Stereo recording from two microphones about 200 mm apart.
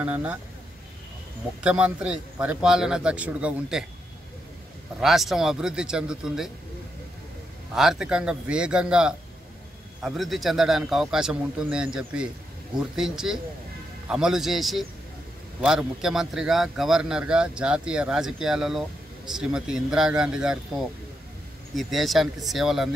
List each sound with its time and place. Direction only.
0.0 s speech: 5° right (ahead or behind)
1.6 s a man's voice: 5° right (ahead or behind)
5.0 s a man's voice: centre (ahead or behind)
7.7 s a man's voice: centre (ahead or behind)
21.7 s a man's voice: centre (ahead or behind)